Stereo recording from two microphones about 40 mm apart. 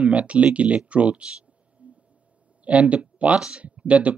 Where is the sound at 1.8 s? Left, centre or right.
Right.